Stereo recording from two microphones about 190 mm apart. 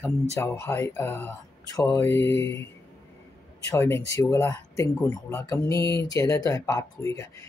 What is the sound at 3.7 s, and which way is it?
Speech, 15° left (ahead or behind).